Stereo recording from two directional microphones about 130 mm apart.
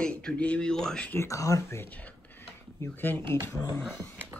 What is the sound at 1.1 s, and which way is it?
Speech, 25° left (ahead or behind).